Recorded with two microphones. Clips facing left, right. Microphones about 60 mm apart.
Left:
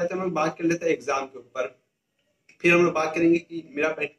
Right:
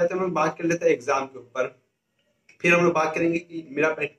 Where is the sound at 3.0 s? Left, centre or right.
Right.